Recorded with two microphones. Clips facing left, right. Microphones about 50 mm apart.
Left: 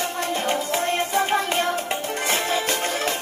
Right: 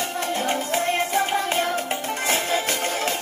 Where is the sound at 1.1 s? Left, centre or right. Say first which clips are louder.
Left 1 dB; left.